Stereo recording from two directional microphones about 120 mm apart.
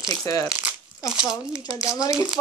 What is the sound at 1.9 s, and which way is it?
Speech, 25° left (ahead or behind).